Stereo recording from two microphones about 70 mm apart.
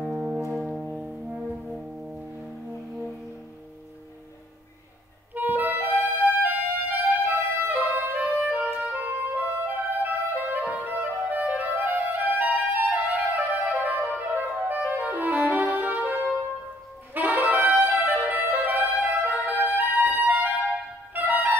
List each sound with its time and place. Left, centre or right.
0.1 s brass instrument: centre
5.3 s music: right
17.1 s brass instrument: right
18.3 s music: right